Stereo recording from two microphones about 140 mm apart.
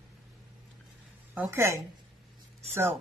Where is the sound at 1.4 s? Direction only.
20° right (ahead or behind).